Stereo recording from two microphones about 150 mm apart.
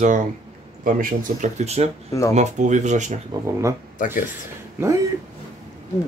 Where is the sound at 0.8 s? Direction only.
65° right (ahead or behind).